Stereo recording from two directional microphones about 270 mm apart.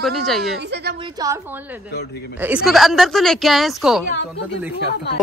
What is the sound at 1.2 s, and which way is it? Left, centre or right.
Speech, centre.